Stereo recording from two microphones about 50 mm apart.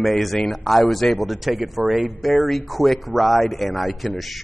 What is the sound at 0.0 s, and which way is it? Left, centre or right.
Speech, centre.